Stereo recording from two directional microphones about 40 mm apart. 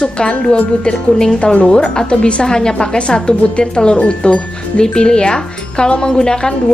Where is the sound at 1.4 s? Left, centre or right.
Left.